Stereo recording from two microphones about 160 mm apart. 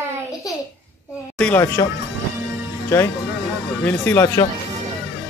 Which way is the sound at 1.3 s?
5° left (ahead or behind).